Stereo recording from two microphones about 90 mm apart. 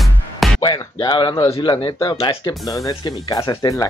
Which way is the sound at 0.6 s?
50° left (ahead or behind).